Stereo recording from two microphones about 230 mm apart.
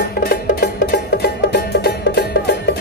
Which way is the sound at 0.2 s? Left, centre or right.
Left.